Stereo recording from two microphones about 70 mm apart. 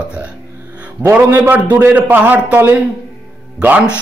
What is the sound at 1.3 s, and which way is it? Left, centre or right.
Speech, right.